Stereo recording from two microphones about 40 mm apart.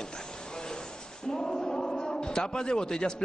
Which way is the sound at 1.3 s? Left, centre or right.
Centre.